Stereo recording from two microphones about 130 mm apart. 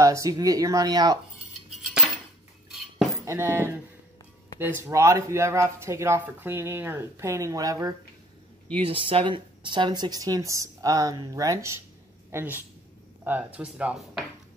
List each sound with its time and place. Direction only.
0.0 s speech: 25° right (ahead or behind)
2.7 s cutlery: centre (ahead or behind)
3.3 s speech: 20° right (ahead or behind)
8.7 s speech: 45° right (ahead or behind); by 14.2 s 5° right (ahead or behind)